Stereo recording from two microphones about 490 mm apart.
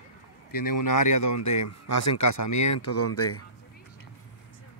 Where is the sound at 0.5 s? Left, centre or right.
Left.